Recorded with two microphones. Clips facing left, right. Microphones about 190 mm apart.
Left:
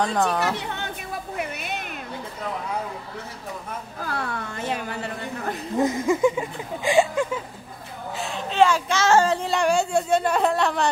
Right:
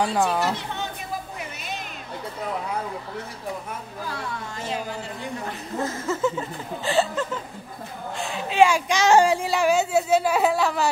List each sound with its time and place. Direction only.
0.0 s speech: 5° right (ahead or behind)
4.5 s a woman's voice: 60° left (ahead or behind)
5.8 s speech: 15° left (ahead or behind)
8.2 s speech: 5° right (ahead or behind)